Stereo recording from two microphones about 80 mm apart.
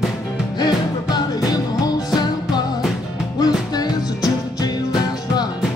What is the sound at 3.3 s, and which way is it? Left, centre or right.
Music, left.